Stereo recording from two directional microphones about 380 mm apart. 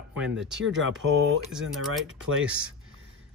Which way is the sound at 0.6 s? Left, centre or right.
Right.